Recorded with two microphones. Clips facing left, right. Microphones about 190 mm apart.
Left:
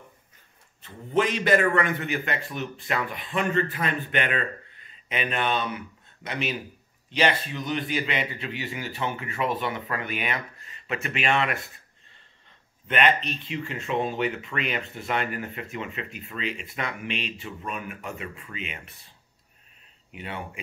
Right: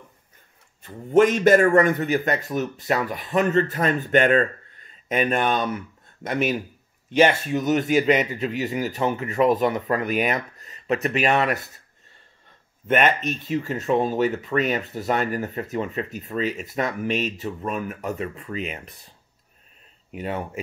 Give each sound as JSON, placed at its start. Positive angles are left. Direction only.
{"t": 0.8, "sound": "a man's voice", "side_deg": -45}
{"t": 12.8, "sound": "speech", "side_deg": -45}
{"t": 20.1, "sound": "speech", "side_deg": -40}